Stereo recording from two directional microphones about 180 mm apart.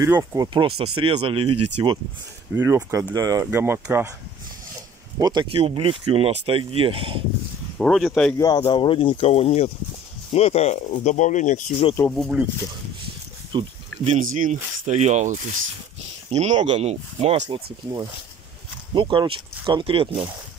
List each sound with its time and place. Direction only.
0.0 s speech: 15° right (ahead or behind)
2.5 s speech: 15° right (ahead or behind)
5.2 s speech: 25° right (ahead or behind)
7.8 s speech: centre (ahead or behind)
8.5 s speech: 30° left (ahead or behind)
12.1 s speech: centre (ahead or behind)
13.5 s a sound: 25° right (ahead or behind)
14.3 s speech: 45° right (ahead or behind)
18.9 s speech: 25° right (ahead or behind)